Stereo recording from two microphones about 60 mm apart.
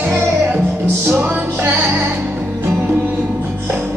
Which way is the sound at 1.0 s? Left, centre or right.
Right.